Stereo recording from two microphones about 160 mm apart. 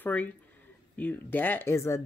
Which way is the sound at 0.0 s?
10° left (ahead or behind).